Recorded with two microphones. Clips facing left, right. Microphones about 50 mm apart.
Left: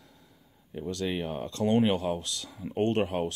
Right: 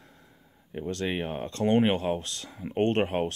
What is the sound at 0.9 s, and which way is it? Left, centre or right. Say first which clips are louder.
Speech: right 1 dB; right.